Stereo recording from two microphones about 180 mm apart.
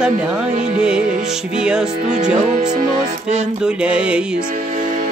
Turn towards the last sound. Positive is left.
turn(degrees=-5)  # may be behind; listen again after turning